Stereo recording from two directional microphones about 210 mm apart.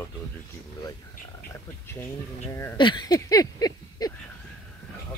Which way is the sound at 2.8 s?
20° left (ahead or behind).